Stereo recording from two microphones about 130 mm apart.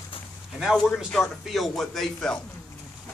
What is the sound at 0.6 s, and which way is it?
Speech, centre (ahead or behind).